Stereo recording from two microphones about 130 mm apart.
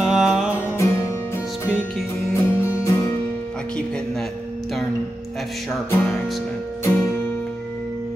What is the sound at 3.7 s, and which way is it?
Music, 5° left (ahead or behind).